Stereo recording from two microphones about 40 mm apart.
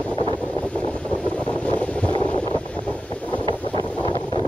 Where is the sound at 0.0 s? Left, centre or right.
Left.